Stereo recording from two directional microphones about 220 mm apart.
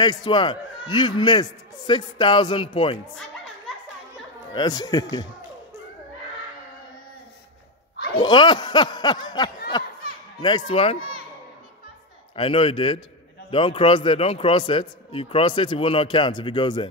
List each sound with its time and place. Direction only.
0.0 s a man's voice: 20° left (ahead or behind)
4.6 s speech: 20° left (ahead or behind)
8.2 s a man's voice: 20° left (ahead or behind)
12.4 s a man's voice: 25° left (ahead or behind)